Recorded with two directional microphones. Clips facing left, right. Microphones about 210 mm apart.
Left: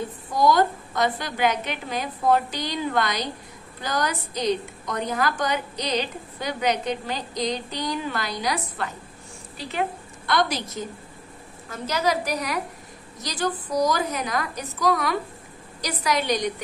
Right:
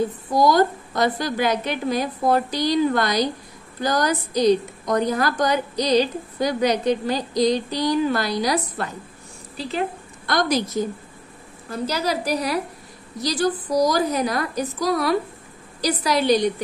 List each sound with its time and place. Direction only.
0.3 s a woman's voice: 35° right (ahead or behind)
11.7 s a woman's voice: 35° right (ahead or behind)